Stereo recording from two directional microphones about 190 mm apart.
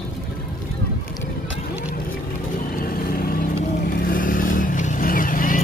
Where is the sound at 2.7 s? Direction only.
50° left (ahead or behind).